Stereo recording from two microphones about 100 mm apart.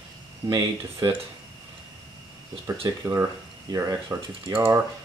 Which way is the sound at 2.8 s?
30° right (ahead or behind).